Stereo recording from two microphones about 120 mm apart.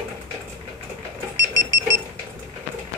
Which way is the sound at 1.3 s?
25° right (ahead or behind).